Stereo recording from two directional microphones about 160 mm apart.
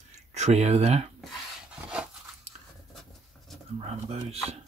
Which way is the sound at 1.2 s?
5° right (ahead or behind).